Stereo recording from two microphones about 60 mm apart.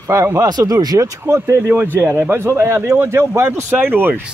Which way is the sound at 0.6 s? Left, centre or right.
Right.